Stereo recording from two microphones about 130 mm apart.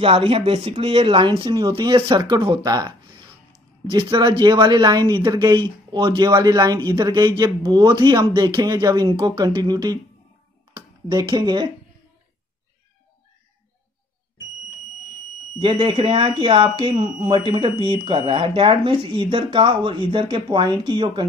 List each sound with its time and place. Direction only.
0.0 s speech: 45° right (ahead or behind)
3.9 s speech: 35° right (ahead or behind)
15.6 s speech: 40° right (ahead or behind)